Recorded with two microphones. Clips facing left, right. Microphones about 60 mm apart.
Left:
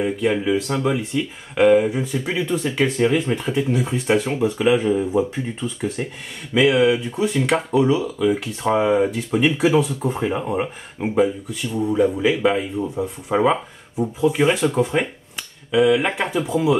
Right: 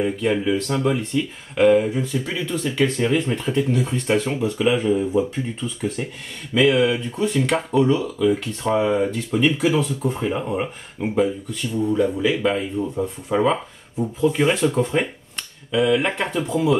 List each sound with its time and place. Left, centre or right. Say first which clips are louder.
0.0 s speech: left 1 dB; centre
3.0 s speech: left 2 dB; centre
5.1 s speech: left 1 dB; left
6.5 s speech: left 1 dB; centre